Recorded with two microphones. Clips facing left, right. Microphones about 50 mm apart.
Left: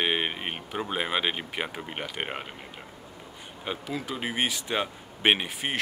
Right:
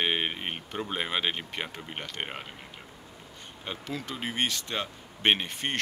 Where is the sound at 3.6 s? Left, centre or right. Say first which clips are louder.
Left 3 dB; centre.